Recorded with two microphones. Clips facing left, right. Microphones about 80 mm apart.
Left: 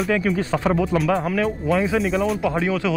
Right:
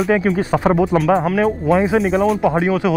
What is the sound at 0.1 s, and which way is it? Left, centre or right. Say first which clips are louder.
Speech: right 4 dB; right.